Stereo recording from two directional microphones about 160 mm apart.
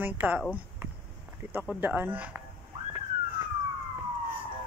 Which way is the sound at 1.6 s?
10° right (ahead or behind).